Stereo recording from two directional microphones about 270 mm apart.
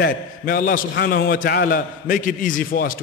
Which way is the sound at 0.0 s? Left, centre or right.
Left.